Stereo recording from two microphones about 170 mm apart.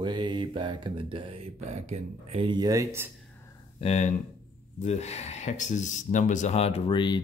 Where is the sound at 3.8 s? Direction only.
40° left (ahead or behind).